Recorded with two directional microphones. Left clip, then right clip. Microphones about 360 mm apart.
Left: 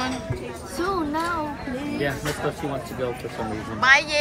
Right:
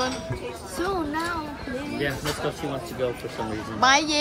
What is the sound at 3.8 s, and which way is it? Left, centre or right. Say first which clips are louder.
Speech: left 2 dB; centre.